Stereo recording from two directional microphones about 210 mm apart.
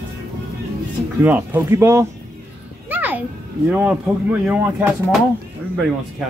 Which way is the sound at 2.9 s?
10° right (ahead or behind).